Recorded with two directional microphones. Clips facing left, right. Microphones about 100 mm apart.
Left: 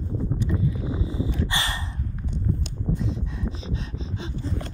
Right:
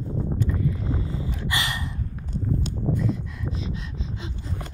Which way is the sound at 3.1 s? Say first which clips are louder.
Left 1 dB; 30° left (ahead or behind).